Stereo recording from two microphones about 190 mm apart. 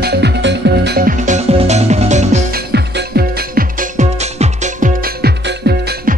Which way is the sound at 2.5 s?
60° right (ahead or behind).